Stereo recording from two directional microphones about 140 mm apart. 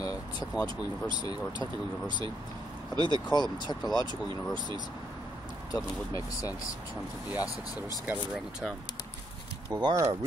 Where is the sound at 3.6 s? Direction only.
30° left (ahead or behind).